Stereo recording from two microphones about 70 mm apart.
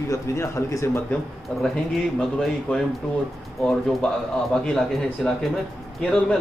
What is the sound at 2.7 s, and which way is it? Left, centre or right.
Speech, centre.